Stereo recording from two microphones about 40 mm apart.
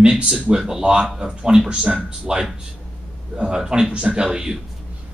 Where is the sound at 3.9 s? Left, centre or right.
Right.